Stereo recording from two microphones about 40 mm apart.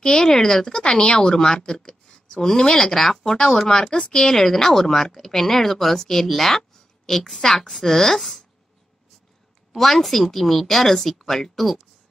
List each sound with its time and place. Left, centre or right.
0.0 s speech: centre
9.8 s speech: centre